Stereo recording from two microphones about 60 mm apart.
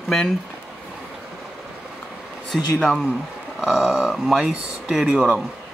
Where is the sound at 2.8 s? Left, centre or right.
Centre.